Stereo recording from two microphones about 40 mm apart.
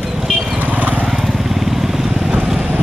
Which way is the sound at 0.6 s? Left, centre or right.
Right.